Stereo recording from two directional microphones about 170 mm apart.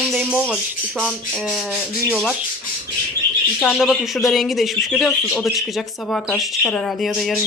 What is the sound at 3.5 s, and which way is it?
Speech, centre (ahead or behind).